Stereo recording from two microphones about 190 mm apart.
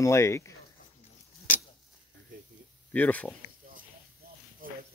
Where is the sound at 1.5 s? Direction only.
45° left (ahead or behind).